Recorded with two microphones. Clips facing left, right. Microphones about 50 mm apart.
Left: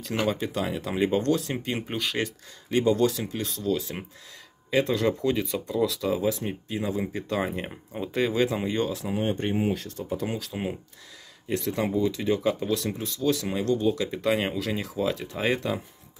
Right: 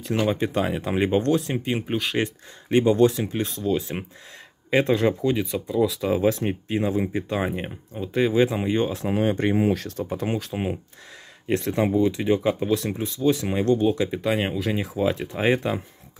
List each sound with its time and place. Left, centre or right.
0.3 s speech: right
1.8 s speech: centre
2.1 s speech: right
5.2 s speech: centre
5.9 s speech: right
6.2 s speech: right
7.0 s speech: centre
8.0 s speech: centre
8.3 s speech: centre
9.7 s speech: right
10.2 s speech: right
14.1 s speech: centre; by 15.8 s right